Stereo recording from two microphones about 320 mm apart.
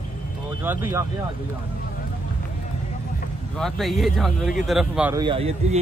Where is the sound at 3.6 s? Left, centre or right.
Centre.